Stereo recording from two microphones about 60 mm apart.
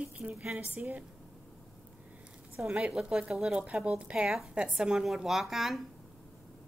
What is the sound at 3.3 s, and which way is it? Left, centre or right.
A woman's voice, centre.